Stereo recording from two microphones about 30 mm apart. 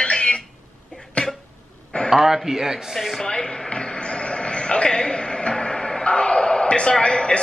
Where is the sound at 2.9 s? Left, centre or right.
Centre.